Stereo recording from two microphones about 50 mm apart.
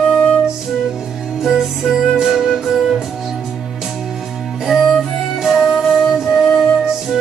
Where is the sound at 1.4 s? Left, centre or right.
Centre.